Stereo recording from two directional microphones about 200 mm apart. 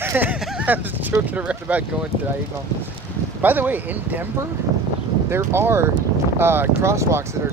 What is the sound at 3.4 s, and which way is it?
Speech, 10° right (ahead or behind).